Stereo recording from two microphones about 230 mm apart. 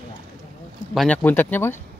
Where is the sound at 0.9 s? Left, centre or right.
Centre.